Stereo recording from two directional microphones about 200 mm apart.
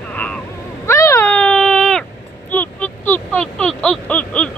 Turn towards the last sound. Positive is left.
turn(degrees=5)  # may be behind; listen again after turning